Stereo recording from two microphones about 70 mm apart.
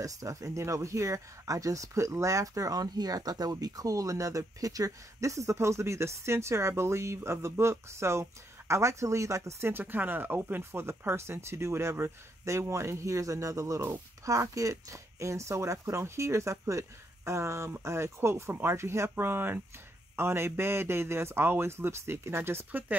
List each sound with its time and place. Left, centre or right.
0.0 s speech: right
9.7 s speech: right
22.7 s speech: right